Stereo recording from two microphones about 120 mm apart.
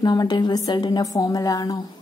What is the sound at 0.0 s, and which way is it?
Speech, 35° left (ahead or behind).